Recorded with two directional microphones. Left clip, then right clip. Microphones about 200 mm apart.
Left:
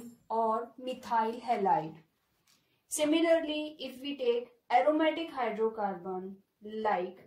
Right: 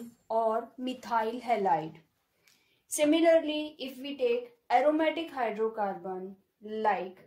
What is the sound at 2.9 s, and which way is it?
Speech, 45° right (ahead or behind).